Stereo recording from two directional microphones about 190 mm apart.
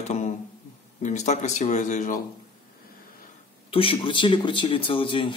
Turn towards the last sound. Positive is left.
turn(degrees=25)  # may be behind; listen again after turning